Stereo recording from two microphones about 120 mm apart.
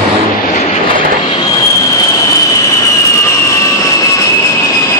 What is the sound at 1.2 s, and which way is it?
Vehicle, 35° left (ahead or behind).